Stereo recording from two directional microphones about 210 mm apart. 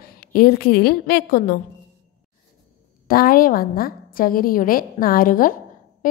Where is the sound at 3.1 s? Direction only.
45° left (ahead or behind).